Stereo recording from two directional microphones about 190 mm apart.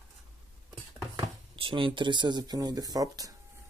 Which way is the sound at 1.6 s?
25° right (ahead or behind).